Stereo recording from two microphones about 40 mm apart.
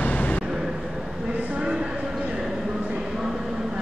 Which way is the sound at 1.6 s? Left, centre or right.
Right.